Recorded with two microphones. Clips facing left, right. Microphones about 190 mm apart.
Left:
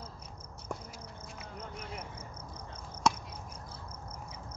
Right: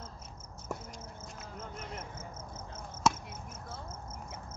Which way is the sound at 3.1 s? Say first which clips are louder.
Even; centre (ahead or behind).